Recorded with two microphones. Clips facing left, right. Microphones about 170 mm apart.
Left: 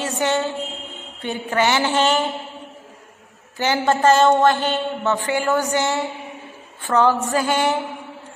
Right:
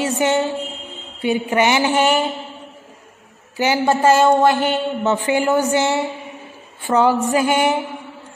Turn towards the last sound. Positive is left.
turn(degrees=-15)  # may be behind; listen again after turning